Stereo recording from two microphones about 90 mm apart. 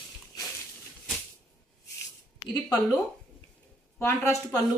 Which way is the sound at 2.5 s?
40° left (ahead or behind).